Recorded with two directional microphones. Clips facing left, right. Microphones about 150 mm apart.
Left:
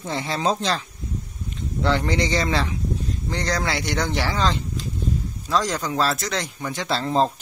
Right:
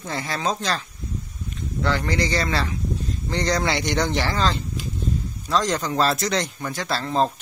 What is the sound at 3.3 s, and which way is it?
Speech, 5° left (ahead or behind).